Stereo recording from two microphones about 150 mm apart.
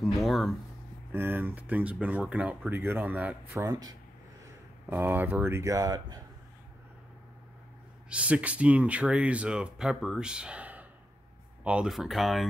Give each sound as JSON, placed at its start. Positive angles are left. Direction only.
{"t": 0.0, "sound": "speech", "side_deg": 0}
{"t": 1.1, "sound": "speech", "side_deg": -15}
{"t": 4.8, "sound": "speech", "side_deg": -10}
{"t": 8.1, "sound": "speech", "side_deg": -10}